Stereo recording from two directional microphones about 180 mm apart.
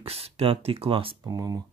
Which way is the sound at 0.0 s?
35° right (ahead or behind).